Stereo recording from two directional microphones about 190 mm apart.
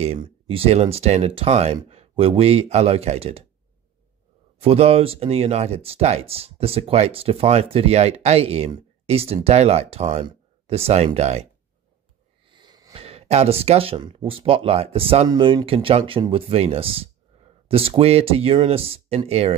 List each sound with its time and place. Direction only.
0.0 s speech: 30° right (ahead or behind)
4.6 s speech: 30° right (ahead or behind)
10.2 s a sound: 30° right (ahead or behind)
11.1 s speech: 35° right (ahead or behind)
12.4 s a sound: 25° right (ahead or behind)
13.0 s speech: 30° right (ahead or behind)